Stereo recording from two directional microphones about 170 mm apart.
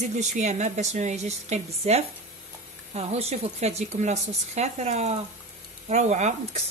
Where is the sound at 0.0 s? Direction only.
45° right (ahead or behind).